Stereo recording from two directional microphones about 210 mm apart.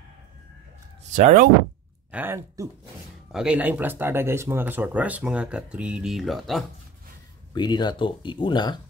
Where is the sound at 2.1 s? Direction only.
10° right (ahead or behind).